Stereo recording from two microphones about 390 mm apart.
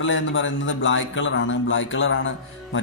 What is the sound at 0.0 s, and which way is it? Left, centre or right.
A man's voice, left.